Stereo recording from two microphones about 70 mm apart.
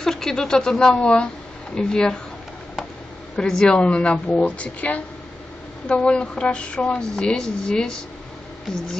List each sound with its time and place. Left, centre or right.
0.0 s a woman's voice: centre
3.3 s a woman's voice: centre